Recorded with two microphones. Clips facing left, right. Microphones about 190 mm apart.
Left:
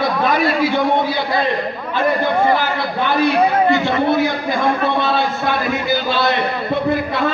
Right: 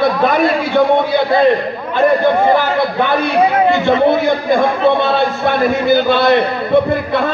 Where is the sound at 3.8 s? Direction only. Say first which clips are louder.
Right 4 dB; 55° right (ahead or behind).